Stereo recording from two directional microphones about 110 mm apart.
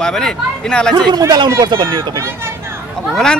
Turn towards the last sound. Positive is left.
turn(degrees=5)  # may be behind; listen again after turning